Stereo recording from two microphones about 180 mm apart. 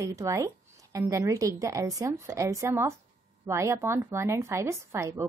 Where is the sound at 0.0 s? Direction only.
15° right (ahead or behind).